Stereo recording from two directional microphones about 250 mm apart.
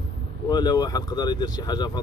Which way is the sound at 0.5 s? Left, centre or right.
Centre.